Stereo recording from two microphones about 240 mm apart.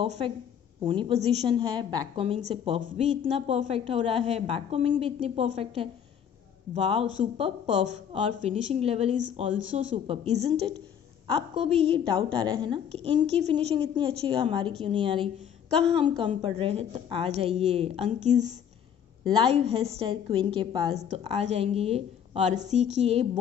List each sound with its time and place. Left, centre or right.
0.0 s a woman's voice: right
15.7 s a woman's voice: centre
16.3 s a woman's voice: right